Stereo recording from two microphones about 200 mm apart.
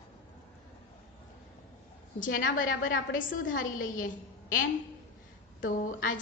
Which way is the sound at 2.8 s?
45° left (ahead or behind).